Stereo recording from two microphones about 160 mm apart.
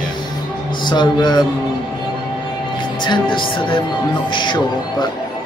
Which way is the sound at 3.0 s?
30° left (ahead or behind).